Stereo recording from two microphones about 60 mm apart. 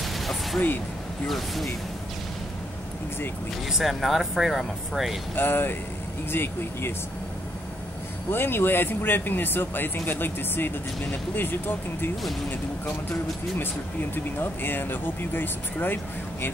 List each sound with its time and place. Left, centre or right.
0.0 s music: centre
1.2 s speech: centre
3.6 s speech: centre
5.3 s speech: left
8.3 s speech: left
14.1 s speech: left